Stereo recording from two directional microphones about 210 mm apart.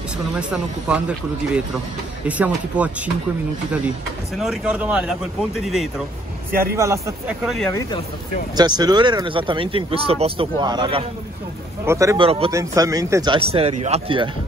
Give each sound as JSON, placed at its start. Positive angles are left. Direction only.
{"t": 0.4, "sound": "speech", "side_deg": -5}
{"t": 4.4, "sound": "speech", "side_deg": -5}
{"t": 6.7, "sound": "speech", "side_deg": -15}
{"t": 7.4, "sound": "speech", "side_deg": 0}
{"t": 8.5, "sound": "speech", "side_deg": -20}
{"t": 11.8, "sound": "speech", "side_deg": -15}
{"t": 12.2, "sound": "speech", "side_deg": -25}
{"t": 12.4, "sound": "speech", "side_deg": -15}